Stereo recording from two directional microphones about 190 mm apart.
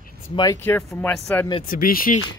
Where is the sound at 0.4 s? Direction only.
15° left (ahead or behind).